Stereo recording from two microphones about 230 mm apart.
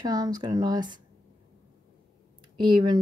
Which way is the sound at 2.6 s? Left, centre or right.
Centre.